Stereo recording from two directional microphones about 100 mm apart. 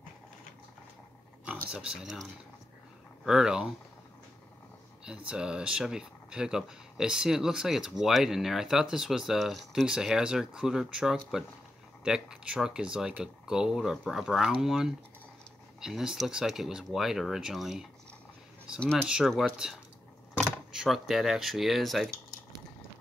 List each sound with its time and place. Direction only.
1.4 s speech: 15° right (ahead or behind)
3.3 s speech: 5° right (ahead or behind)
5.0 s speech: 10° right (ahead or behind)
18.8 s speech: 10° left (ahead or behind)
19.0 s speech: 5° right (ahead or behind)
20.7 s speech: 5° right (ahead or behind)